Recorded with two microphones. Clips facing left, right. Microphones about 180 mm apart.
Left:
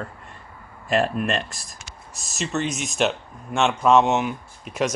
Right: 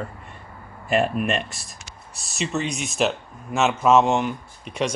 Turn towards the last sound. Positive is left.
turn(degrees=5)  # may be behind; listen again after turning